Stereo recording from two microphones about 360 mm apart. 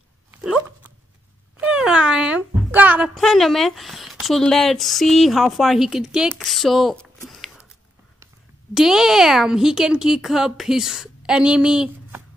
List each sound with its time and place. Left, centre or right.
0.3 s dog: centre
1.6 s a child's voice: centre
8.7 s a child's voice: centre